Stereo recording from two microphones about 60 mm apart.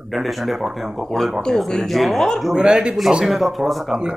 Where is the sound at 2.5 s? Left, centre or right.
Centre.